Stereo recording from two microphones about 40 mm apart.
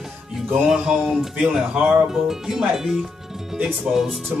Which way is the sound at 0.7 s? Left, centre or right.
Centre.